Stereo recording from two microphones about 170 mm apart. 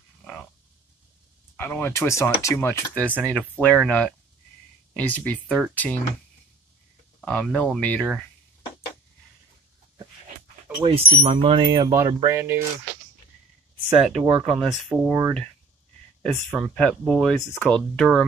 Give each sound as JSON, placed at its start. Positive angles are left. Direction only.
{"t": 1.6, "sound": "speech", "side_deg": 15}
{"t": 7.2, "sound": "speech", "side_deg": 0}
{"t": 10.8, "sound": "speech", "side_deg": -30}
{"t": 13.8, "sound": "speech", "side_deg": 0}
{"t": 16.2, "sound": "speech", "side_deg": 0}